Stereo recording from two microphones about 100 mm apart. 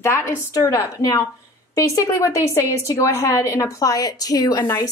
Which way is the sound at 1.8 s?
35° left (ahead or behind).